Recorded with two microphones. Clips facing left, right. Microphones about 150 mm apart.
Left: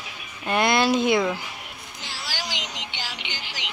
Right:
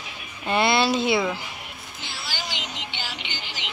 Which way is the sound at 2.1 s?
90° left.